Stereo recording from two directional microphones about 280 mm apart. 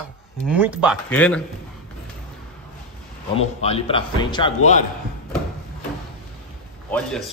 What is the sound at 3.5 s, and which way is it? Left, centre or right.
Speech, left.